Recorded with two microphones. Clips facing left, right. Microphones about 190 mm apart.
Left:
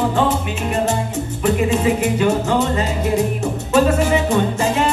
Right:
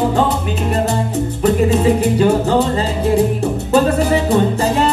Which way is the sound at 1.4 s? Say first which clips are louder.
Right 3 dB; 35° right (ahead or behind).